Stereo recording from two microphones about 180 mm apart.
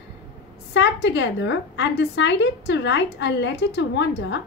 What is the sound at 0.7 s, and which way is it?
A woman's voice, 80° left.